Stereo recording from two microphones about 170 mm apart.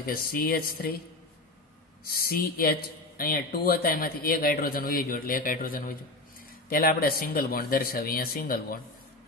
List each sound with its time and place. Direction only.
0.0 s speech: 60° left (ahead or behind)
2.0 s speech: 60° left (ahead or behind)